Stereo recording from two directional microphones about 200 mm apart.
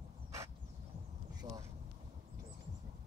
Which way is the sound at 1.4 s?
25° right (ahead or behind).